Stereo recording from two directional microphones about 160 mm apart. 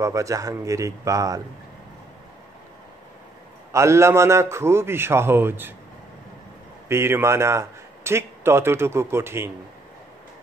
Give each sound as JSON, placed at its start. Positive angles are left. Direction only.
{"t": 0.0, "sound": "speech", "side_deg": -20}
{"t": 3.7, "sound": "a man's voice", "side_deg": -15}
{"t": 6.9, "sound": "speech", "side_deg": -15}